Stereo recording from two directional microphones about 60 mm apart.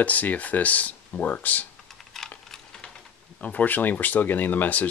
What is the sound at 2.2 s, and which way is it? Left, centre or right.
Typing, centre.